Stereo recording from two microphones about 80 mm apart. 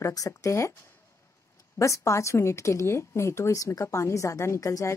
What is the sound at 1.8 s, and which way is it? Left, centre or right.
A woman's voice, left.